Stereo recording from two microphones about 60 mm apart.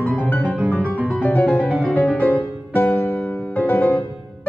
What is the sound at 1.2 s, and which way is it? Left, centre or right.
Music, left.